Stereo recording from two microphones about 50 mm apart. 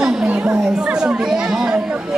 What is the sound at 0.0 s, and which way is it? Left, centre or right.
Chatter, centre.